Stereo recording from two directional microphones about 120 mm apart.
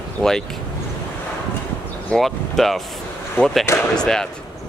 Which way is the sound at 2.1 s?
Centre (ahead or behind).